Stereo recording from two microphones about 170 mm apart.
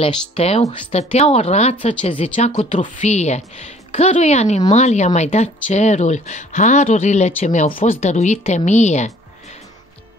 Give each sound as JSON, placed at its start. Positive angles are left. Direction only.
{"t": 0.0, "sound": "speech", "side_deg": 35}